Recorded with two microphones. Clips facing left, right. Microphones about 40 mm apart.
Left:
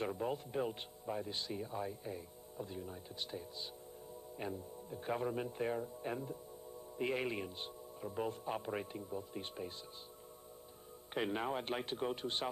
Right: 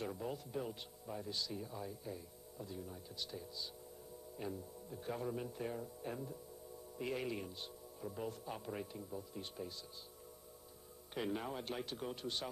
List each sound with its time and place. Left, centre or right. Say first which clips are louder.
0.2 s speech: left 5 dB; left
11.1 s speech: left 4 dB; left